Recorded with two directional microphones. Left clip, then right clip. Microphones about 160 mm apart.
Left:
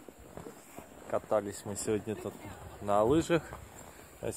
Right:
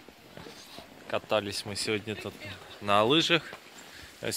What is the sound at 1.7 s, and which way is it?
Speech, 15° left (ahead or behind).